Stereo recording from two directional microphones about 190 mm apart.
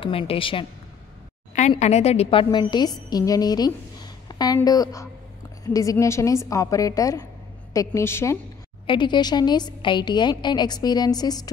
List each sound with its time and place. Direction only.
0.0 s a woman's voice: 30° left (ahead or behind)
1.7 s a woman's voice: 35° left (ahead or behind); by 8.4 s 15° left (ahead or behind)
8.8 s a woman's voice: 25° left (ahead or behind)